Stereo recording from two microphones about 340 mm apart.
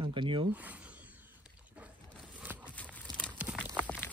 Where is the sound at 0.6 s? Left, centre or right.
Centre.